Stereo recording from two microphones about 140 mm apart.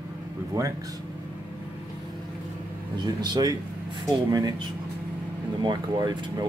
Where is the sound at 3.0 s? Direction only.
30° right (ahead or behind).